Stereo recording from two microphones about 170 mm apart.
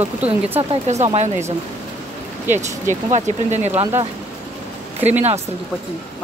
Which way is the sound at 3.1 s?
45° right (ahead or behind).